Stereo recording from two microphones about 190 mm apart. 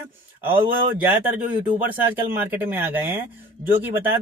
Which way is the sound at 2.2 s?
10° right (ahead or behind).